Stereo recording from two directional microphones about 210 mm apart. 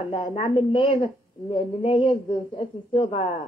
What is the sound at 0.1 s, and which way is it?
A woman's voice, 25° left (ahead or behind).